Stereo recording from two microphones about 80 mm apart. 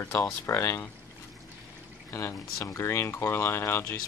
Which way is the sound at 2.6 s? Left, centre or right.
Left.